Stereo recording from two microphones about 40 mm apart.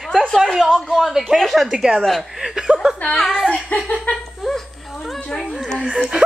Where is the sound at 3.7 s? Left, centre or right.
Left.